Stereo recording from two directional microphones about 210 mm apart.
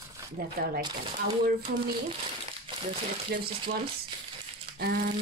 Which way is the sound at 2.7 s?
25° right (ahead or behind).